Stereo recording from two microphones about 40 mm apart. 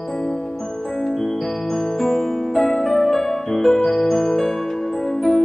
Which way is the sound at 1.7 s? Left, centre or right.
Centre.